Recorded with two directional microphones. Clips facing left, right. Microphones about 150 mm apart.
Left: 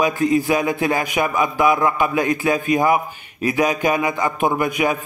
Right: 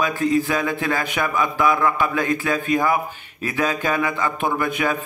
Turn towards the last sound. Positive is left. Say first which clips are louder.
# left 3 dB
turn(degrees=15)  # may be behind; listen again after turning